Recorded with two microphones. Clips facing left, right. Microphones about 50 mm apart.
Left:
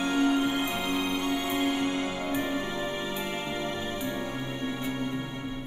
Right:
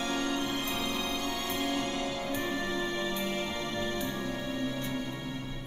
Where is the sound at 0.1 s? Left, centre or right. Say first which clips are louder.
Left 9 dB; centre.